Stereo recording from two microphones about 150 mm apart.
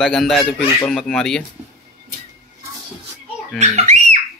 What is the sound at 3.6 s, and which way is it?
Bird, 45° right (ahead or behind).